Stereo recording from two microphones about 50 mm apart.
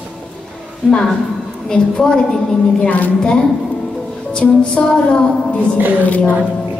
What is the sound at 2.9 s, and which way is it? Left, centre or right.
Speech, left.